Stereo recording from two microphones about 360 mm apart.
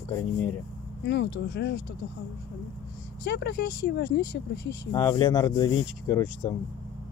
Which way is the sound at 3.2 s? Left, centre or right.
Left.